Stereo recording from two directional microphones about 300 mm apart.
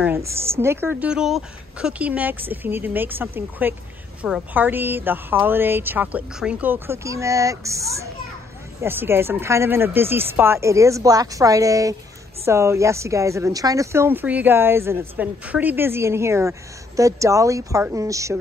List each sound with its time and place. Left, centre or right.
0.5 s a woman's voice: centre